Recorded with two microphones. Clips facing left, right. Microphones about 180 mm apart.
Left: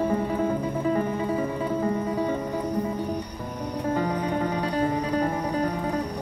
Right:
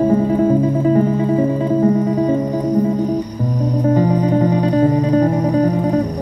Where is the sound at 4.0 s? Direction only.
20° right (ahead or behind).